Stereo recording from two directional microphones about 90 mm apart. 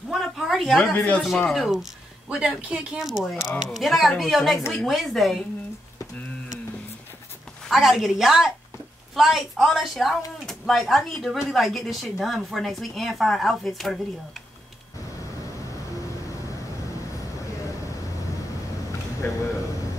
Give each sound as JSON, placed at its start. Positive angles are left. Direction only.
{"t": 0.1, "sound": "a sound", "side_deg": 0}
{"t": 0.7, "sound": "speech", "side_deg": 15}
{"t": 1.5, "sound": "a woman's voice", "side_deg": 0}
{"t": 7.6, "sound": "a woman's voice", "side_deg": 0}
{"t": 19.2, "sound": "speech", "side_deg": 25}